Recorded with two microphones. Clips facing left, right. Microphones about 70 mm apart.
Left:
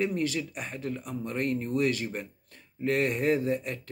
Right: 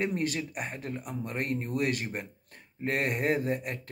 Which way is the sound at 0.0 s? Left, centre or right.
Right.